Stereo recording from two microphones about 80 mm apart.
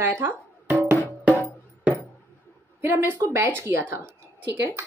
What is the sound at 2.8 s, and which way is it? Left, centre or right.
Speech, right.